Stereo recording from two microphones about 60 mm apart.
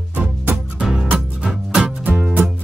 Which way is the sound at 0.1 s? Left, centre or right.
Right.